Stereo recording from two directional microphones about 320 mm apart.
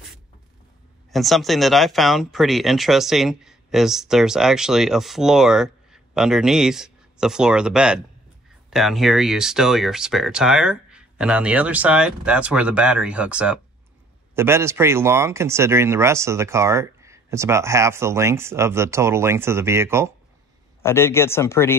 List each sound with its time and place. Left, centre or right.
1.1 s speech: centre
20.8 s speech: centre